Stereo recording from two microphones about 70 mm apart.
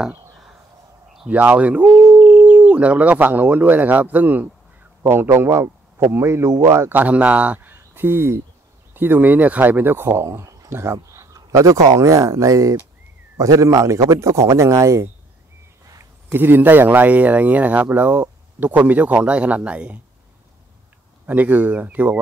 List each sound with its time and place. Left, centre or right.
1.3 s speech: right
6.9 s a man's voice: right
21.3 s speech: right